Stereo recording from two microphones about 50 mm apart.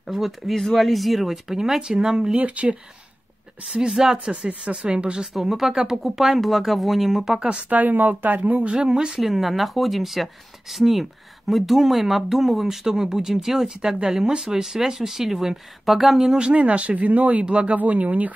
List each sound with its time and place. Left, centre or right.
0.0 s speech: centre
2.3 s speech: right
3.6 s speech: centre
4.5 s speech: right
5.3 s speech: centre
7.3 s speech: right
7.7 s speech: right
8.4 s speech: right; by 16.3 s centre
16.3 s speech: right